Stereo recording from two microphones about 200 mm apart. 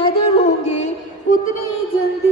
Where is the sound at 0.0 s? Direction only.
35° left (ahead or behind).